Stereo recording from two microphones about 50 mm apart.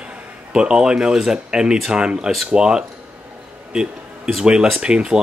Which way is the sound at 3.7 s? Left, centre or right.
Centre.